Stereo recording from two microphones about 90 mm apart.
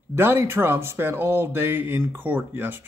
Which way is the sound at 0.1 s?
25° right (ahead or behind).